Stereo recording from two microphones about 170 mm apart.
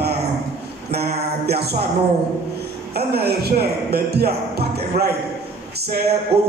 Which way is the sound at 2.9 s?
70° right (ahead or behind).